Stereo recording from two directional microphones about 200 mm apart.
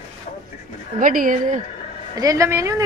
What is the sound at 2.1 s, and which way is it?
Speech, 15° right (ahead or behind).